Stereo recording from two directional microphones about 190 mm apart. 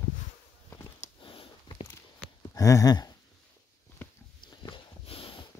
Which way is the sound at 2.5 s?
20° left (ahead or behind).